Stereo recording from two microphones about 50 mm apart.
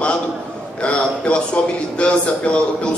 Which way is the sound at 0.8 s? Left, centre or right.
Left.